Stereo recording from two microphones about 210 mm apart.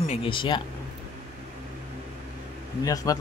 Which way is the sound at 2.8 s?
15° left (ahead or behind).